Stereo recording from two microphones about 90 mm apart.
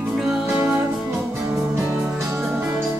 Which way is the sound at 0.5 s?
15° right (ahead or behind).